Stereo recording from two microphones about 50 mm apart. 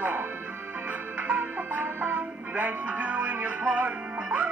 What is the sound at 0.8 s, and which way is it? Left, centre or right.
Music, right.